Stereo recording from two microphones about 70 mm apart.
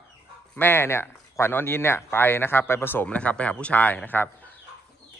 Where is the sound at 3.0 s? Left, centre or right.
Centre.